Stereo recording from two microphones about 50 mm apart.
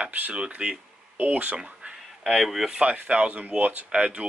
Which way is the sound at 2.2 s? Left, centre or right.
Centre.